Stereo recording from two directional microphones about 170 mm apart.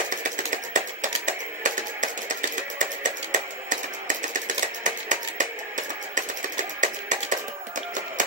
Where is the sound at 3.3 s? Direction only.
50° right (ahead or behind).